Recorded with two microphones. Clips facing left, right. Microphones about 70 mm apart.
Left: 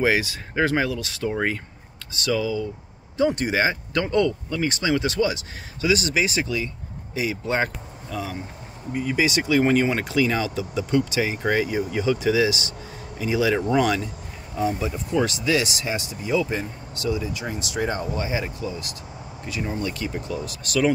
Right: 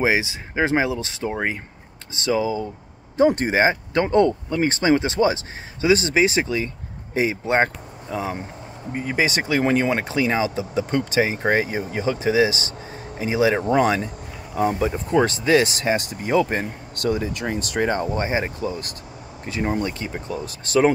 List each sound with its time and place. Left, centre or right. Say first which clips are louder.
0.0 s speech: right 1 dB; centre; by 10.0 s right
10.0 s speech: right 1 dB; right
10.9 s speech: even; right
13.7 s speech: right 2 dB; right
14.5 s speech: right 4 dB; right
17.8 s speech: right 4 dB; right